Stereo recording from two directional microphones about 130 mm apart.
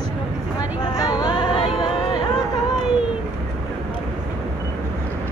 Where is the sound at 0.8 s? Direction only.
30° left (ahead or behind).